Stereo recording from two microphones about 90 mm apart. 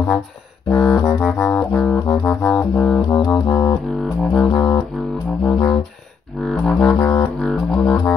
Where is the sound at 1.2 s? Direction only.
5° left (ahead or behind).